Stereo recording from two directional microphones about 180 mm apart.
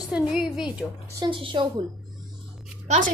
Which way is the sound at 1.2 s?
25° right (ahead or behind).